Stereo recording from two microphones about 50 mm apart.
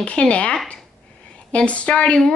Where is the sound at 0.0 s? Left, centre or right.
Left.